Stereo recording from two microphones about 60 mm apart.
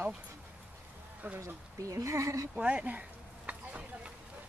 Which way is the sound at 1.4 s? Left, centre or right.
Right.